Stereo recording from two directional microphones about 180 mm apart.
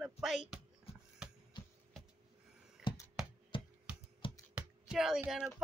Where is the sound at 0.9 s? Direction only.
35° left (ahead or behind).